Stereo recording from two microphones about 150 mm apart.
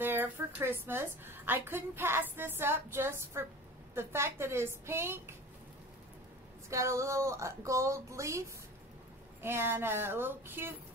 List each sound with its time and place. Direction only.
0.0 s a woman's voice: 15° right (ahead or behind)
6.7 s a woman's voice: 20° right (ahead or behind)